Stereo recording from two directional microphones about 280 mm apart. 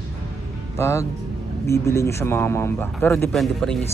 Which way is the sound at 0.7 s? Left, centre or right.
Centre.